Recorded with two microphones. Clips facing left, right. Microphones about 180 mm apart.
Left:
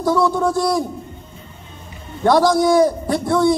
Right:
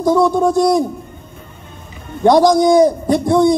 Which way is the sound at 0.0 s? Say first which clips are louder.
Right 4 dB; 20° right (ahead or behind).